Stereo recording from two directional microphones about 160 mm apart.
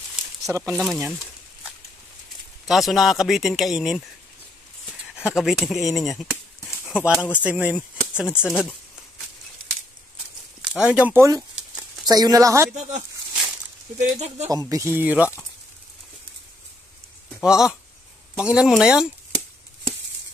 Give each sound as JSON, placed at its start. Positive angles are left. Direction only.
{"t": 0.4, "sound": "a sound", "side_deg": -20}
{"t": 0.7, "sound": "speech", "side_deg": 0}
{"t": 2.7, "sound": "speech", "side_deg": 0}
{"t": 5.1, "sound": "speech", "side_deg": -5}
{"t": 6.6, "sound": "a sound", "side_deg": 15}
{"t": 6.9, "sound": "speech", "side_deg": -5}
{"t": 10.9, "sound": "speech", "side_deg": -10}
{"t": 13.3, "sound": "walk", "side_deg": -5}
{"t": 13.9, "sound": "speech", "side_deg": -45}
{"t": 14.5, "sound": "speech", "side_deg": -20}
{"t": 17.3, "sound": "speech", "side_deg": -5}